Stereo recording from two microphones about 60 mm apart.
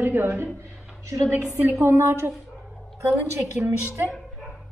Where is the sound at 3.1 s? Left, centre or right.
Right.